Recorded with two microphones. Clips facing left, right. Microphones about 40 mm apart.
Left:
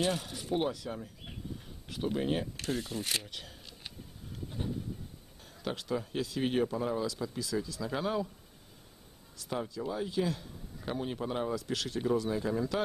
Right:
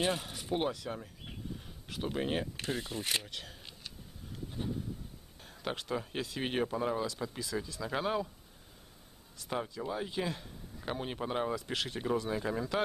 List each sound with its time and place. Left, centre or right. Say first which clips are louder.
0.1 s speech: left 1 dB; centre
3.3 s speech: right 1 dB; centre
4.6 s a sound: even; centre
5.4 s speech: even; centre
9.4 s speech: left 1 dB; centre